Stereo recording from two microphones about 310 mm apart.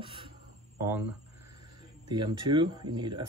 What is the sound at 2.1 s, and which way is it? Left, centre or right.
Speech, centre.